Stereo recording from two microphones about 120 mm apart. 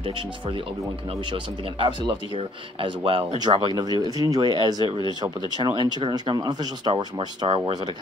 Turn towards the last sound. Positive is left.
turn(degrees=-40)  # may be behind; listen again after turning